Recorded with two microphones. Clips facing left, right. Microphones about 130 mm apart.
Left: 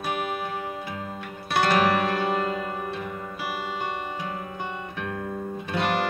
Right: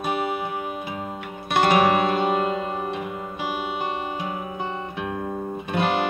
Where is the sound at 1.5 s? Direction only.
15° right (ahead or behind).